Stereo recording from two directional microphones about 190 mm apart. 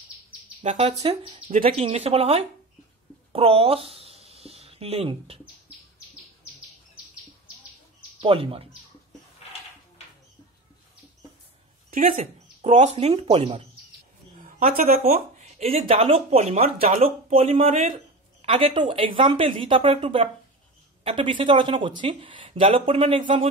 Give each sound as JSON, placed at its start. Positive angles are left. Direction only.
{"t": 0.6, "sound": "speech", "side_deg": -35}
{"t": 3.3, "sound": "a sound", "side_deg": -30}
{"t": 8.2, "sound": "speech", "side_deg": -30}
{"t": 11.9, "sound": "speech", "side_deg": -40}
{"t": 14.4, "sound": "speech", "side_deg": -50}
{"t": 15.1, "sound": "speech", "side_deg": -35}